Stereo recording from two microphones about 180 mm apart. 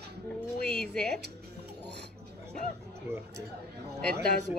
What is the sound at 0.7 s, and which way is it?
Music, 5° left (ahead or behind).